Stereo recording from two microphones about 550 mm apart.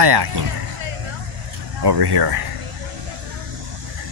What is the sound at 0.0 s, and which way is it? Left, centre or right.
Speech, right.